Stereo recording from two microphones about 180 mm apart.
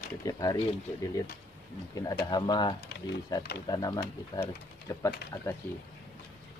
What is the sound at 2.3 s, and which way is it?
Speech, 25° left (ahead or behind).